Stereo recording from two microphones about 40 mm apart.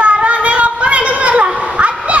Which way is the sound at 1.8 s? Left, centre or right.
Right.